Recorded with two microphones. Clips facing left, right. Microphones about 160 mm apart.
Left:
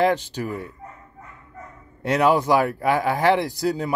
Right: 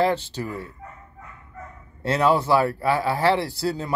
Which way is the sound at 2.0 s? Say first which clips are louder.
Left 1 dB; 15° left (ahead or behind).